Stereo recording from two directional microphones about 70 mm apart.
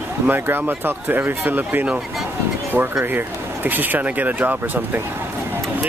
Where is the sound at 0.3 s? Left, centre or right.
Right.